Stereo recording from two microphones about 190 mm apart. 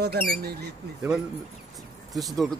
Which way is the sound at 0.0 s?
55° right (ahead or behind).